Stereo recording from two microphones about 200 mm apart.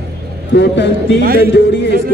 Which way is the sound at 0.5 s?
60° left (ahead or behind).